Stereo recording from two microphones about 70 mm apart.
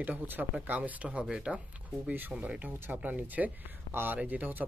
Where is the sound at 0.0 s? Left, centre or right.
Right.